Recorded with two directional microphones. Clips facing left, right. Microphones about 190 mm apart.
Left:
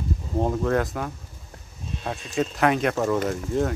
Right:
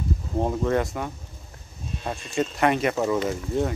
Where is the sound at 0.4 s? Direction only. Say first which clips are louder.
Even; centre (ahead or behind).